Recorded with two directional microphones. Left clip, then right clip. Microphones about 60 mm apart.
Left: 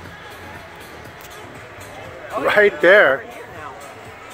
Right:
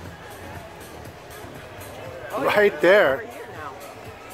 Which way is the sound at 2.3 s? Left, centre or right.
Centre.